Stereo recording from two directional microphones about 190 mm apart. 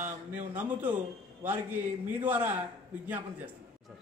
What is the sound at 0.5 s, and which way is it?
A man's voice, 10° right (ahead or behind).